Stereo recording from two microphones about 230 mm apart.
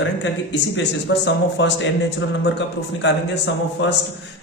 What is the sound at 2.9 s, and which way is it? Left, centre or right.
Speech, left.